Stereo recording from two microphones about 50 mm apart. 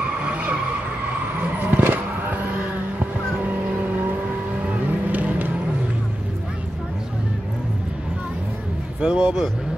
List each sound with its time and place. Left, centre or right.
0.2 s vehicle: right
1.6 s vehicle: right
9.0 s speech: centre